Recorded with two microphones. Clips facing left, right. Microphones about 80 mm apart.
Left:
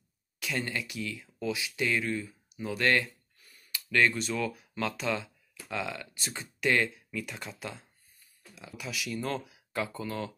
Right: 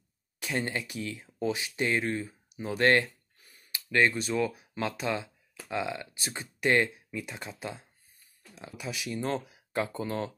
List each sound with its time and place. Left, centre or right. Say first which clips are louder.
0.4 s speech: right 2 dB; right